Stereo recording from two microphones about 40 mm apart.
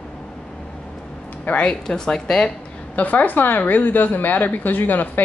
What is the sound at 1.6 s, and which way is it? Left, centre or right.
Speech, centre.